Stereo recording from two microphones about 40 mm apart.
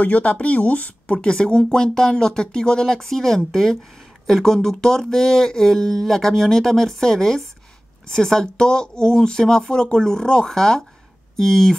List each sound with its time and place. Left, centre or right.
0.0 s speech: left
1.3 s speech: left